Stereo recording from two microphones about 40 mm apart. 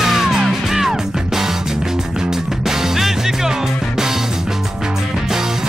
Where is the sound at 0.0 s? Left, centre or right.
Centre.